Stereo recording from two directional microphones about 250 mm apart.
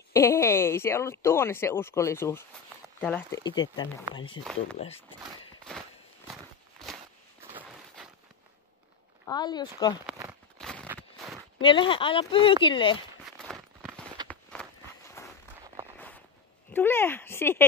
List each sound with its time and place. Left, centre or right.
0.1 s speech: centre
4.5 s speech: centre
6.8 s walk: centre
7.5 s a sound: centre
9.3 s speech: centre
10.6 s a sound: centre
11.0 s walk: centre
11.6 s speech: centre
13.4 s a sound: centre
14.2 s walk: centre
15.6 s a sound: centre
16.7 s speech: centre